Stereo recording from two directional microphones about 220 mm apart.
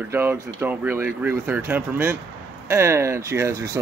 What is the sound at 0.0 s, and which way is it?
Speech, 10° right (ahead or behind).